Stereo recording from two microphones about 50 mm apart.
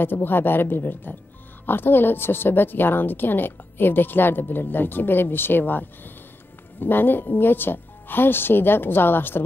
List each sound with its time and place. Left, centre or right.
0.0 s a woman's voice: left